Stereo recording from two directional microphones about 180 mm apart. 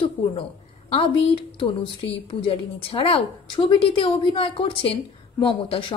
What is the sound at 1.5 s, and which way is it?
A woman's voice, 30° left (ahead or behind).